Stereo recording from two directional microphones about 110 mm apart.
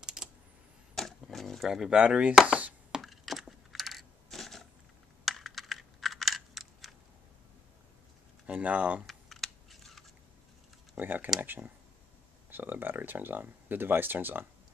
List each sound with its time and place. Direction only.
0.0 s a sound: 5° right (ahead or behind)
0.9 s chop: 5° left (ahead or behind)
5.2 s computer keyboard: centre (ahead or behind)
8.5 s speech: 15° right (ahead or behind)
9.0 s computer keyboard: centre (ahead or behind)
11.0 s speech: 15° right (ahead or behind)